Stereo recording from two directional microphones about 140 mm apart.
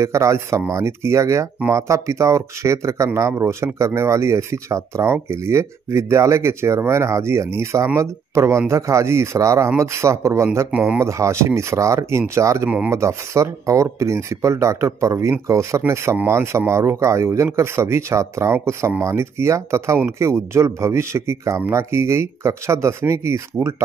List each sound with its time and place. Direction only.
0.0 s speech: 20° right (ahead or behind)
10.7 s speech: 10° right (ahead or behind)
11.0 s speech: 20° right (ahead or behind)
12.6 s speech: 10° right (ahead or behind)
12.9 s speech: 20° right (ahead or behind)